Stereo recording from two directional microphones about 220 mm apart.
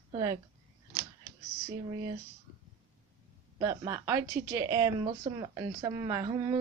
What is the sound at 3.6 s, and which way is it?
A woman's voice, 15° right (ahead or behind).